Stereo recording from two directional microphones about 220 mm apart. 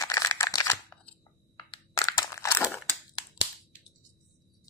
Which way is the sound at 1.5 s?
15° left (ahead or behind).